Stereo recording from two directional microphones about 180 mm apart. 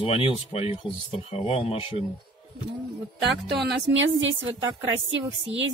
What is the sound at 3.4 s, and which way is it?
Speech, 65° right (ahead or behind).